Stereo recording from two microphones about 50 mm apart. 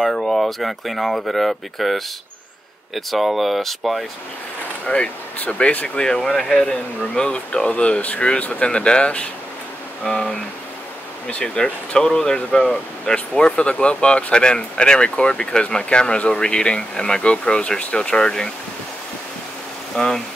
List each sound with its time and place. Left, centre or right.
0.1 s speech: centre
4.8 s speech: left
5.9 s speech: centre
11.4 s speech: centre
19.9 s speech: centre